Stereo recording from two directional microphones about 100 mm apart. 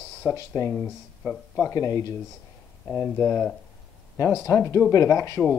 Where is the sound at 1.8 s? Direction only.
35° left (ahead or behind).